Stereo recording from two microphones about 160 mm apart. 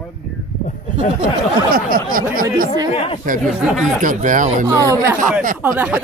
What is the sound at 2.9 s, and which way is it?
Speech, 35° left (ahead or behind).